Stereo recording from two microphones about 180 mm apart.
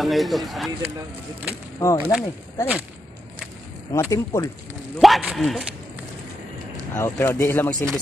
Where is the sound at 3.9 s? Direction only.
15° left (ahead or behind).